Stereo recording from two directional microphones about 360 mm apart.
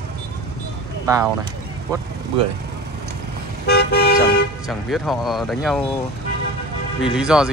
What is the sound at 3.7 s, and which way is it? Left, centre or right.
Car, left.